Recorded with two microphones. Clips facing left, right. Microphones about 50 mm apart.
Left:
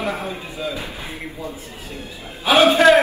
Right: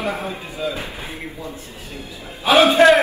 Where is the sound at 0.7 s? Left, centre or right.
Right.